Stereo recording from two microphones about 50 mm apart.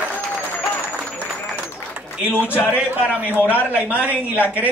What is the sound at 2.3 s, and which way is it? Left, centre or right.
Speech, left.